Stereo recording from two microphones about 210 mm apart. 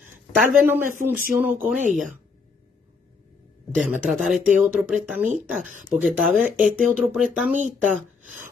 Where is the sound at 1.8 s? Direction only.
35° right (ahead or behind).